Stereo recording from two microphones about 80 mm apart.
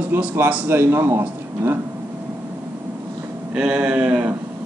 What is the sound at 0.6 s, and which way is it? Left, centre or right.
Speech, right.